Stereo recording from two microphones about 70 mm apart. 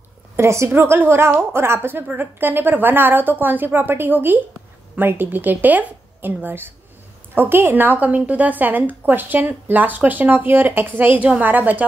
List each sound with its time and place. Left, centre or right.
0.4 s a woman's voice: right